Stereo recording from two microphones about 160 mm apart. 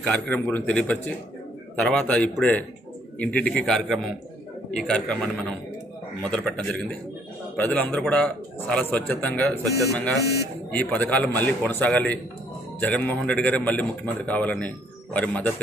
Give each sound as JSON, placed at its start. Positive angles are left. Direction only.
{"t": 0.0, "sound": "a man's voice", "side_deg": 10}
{"t": 9.7, "sound": "speech", "side_deg": -20}
{"t": 10.7, "sound": "a man's voice", "side_deg": 10}